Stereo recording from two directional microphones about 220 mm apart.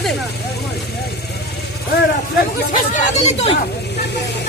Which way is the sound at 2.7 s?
35° left (ahead or behind).